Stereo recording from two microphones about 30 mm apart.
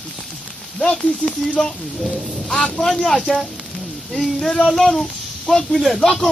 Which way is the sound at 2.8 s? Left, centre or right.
Centre.